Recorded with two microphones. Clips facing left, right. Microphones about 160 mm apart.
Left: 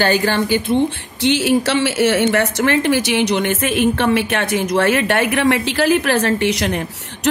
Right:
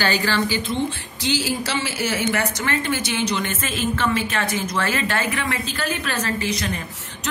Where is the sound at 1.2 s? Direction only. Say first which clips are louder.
Left 9 dB; 65° left (ahead or behind).